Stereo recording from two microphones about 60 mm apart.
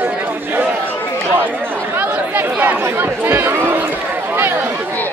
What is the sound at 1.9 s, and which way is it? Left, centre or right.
Chatter, right.